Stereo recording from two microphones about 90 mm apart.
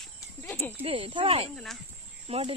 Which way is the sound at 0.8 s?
90° right.